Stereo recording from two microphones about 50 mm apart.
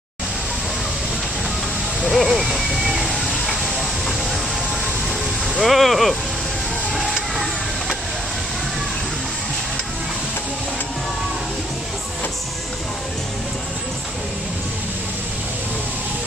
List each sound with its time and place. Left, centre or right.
2.0 s a sound: centre
5.6 s speech: centre
6.9 s vehicle: centre